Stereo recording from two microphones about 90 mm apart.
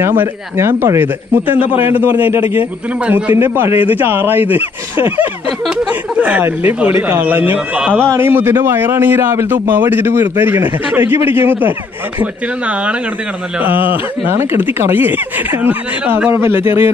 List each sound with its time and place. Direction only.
0.0 s a man's voice: 25° right (ahead or behind)
6.1 s a man's voice: 15° right (ahead or behind)